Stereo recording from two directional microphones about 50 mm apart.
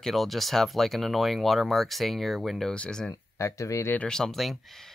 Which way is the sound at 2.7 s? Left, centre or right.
Left.